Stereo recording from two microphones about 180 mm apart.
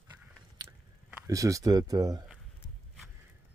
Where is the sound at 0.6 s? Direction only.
20° right (ahead or behind).